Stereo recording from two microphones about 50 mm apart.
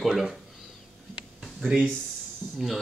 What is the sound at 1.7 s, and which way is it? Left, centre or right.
Speech, centre.